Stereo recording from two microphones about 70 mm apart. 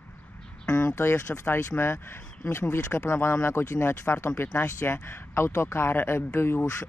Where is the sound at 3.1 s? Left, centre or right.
Left.